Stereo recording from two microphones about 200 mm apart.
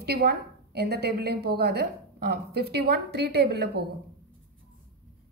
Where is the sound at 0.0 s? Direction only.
50° right (ahead or behind).